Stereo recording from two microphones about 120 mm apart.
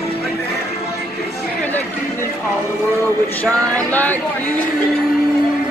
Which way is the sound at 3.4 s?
15° left (ahead or behind).